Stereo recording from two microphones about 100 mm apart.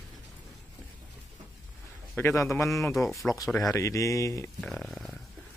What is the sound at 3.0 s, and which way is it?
Speech, centre (ahead or behind).